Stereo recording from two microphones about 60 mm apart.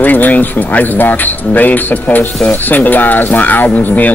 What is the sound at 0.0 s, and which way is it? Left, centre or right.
Speech, left.